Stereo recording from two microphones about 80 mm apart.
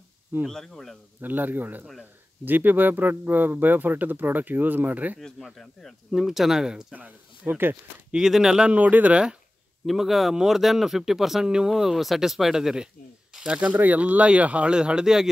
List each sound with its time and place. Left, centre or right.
0.5 s speech: centre
1.2 s a man's voice: right
5.2 s speech: centre
6.9 s a man's voice: centre
8.1 s speech: centre
9.8 s speech: centre